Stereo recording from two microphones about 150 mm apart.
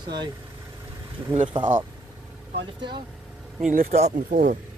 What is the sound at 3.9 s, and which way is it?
Speech, 50° right (ahead or behind).